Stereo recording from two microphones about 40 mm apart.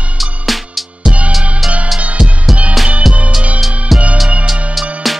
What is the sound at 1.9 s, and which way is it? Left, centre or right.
Music, right.